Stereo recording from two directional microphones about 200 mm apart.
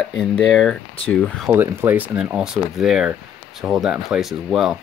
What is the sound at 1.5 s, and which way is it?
Speech, 10° right (ahead or behind).